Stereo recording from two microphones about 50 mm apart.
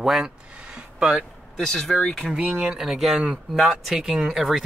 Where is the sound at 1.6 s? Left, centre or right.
Centre.